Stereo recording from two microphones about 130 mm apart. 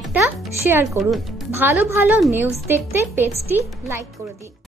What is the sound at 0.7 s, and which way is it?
Speech, 20° right (ahead or behind).